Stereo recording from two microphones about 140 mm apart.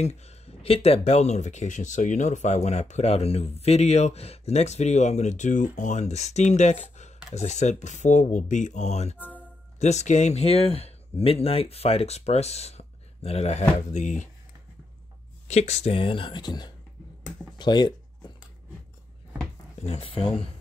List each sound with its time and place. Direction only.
0.0 s speech: 50° left (ahead or behind)
15.4 s speech: 50° left (ahead or behind); by 16.7 s 30° left (ahead or behind)
17.6 s a sound: 30° left (ahead or behind)
19.8 s speech: 45° left (ahead or behind)